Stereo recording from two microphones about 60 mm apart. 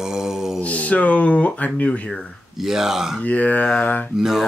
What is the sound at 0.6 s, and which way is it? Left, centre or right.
Speech, left.